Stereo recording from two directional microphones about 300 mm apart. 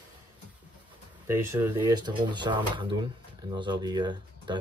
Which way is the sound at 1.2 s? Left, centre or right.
Centre.